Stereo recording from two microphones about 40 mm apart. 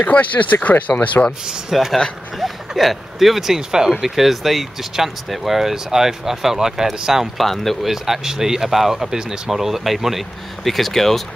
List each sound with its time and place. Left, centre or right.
0.0 s speech: left
1.7 s speech: centre
7.3 s speech: centre
7.9 s speech: centre